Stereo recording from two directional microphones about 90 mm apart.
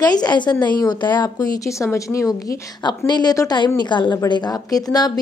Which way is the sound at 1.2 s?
40° left (ahead or behind).